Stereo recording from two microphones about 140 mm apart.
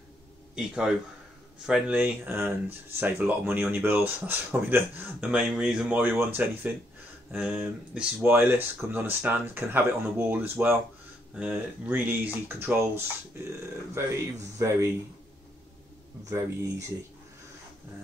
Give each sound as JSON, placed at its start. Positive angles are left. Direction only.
{"t": 0.6, "sound": "a man's voice", "side_deg": -5}
{"t": 16.3, "sound": "speech", "side_deg": -20}